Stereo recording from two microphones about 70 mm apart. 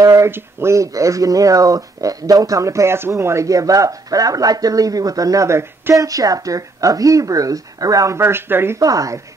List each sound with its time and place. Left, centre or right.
0.0 s a sound: right
0.3 s speech: right
5.9 s speech: right
8.2 s speech: right
8.7 s speech: right